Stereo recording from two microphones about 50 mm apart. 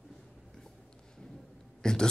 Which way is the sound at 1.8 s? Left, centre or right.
Centre.